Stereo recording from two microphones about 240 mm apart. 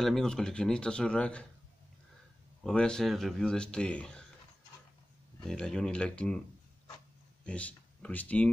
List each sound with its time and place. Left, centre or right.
0.0 s speech: centre
2.6 s speech: centre
5.4 s speech: centre
7.4 s speech: centre